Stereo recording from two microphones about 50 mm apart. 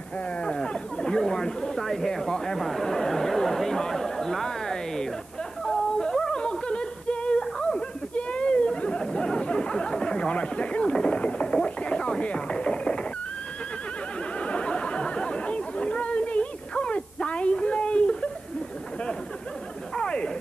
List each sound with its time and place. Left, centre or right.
0.4 s chatter: centre
5.7 s music: centre
8.1 s chatter: left
14.4 s chatter: left
20.0 s a sound: centre